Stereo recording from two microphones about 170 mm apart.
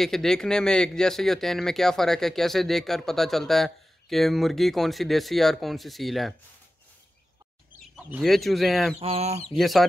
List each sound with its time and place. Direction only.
0.0 s speech: centre (ahead or behind)
7.9 s speech: centre (ahead or behind)
9.0 s chicken: 35° right (ahead or behind)
9.5 s speech: centre (ahead or behind)